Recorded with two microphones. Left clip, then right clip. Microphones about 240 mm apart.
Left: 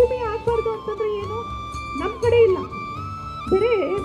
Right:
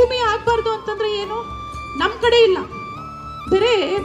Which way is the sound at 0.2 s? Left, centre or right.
Right.